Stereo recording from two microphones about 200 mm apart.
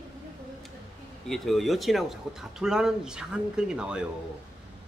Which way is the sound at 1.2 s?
Centre (ahead or behind).